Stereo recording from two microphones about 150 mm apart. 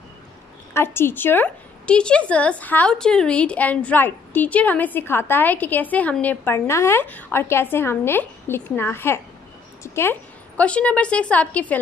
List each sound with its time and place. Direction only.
0.7 s a woman's voice: 15° left (ahead or behind)
10.6 s a woman's voice: 10° left (ahead or behind)